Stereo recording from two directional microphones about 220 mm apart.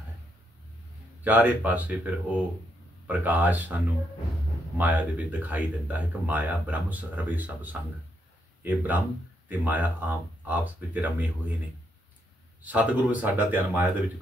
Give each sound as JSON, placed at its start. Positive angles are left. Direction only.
{"t": 1.2, "sound": "speech", "side_deg": -5}
{"t": 12.6, "sound": "speech", "side_deg": -5}